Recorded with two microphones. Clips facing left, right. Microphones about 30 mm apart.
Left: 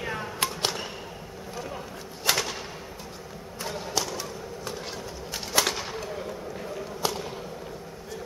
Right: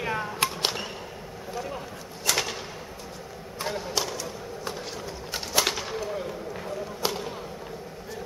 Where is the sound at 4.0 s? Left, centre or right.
Centre.